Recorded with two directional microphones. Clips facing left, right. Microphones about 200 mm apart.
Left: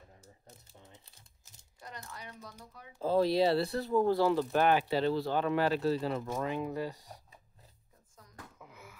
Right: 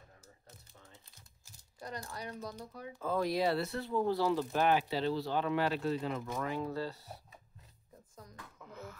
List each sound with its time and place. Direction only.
0.7 s typing: 20° left (ahead or behind)
2.0 s speech: 40° right (ahead or behind)
3.0 s speech: 30° left (ahead or behind)
6.4 s speech: 15° left (ahead or behind)
8.5 s a sound: 10° left (ahead or behind)